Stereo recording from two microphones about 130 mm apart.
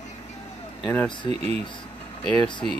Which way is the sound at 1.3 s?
50° right (ahead or behind).